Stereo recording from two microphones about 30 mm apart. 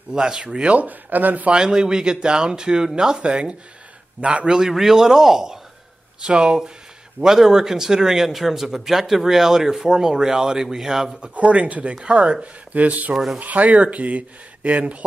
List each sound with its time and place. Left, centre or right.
0.1 s speech: right
0.7 s speech: right
1.5 s speech: right
4.5 s speech: right
4.7 s speech: centre
6.2 s speech: right
7.2 s speech: centre
8.3 s speech: centre
11.3 s speech: right
12.0 s speech: right
12.7 s speech: right
13.1 s speech: centre
13.4 s speech: right